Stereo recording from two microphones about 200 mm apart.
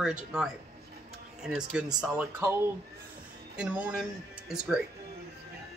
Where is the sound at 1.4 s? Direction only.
5° right (ahead or behind).